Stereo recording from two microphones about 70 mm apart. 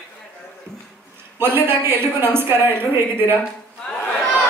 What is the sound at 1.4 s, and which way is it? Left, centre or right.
Speech, right.